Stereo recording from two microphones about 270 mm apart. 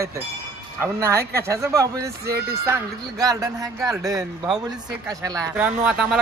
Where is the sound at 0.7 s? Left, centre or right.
Centre.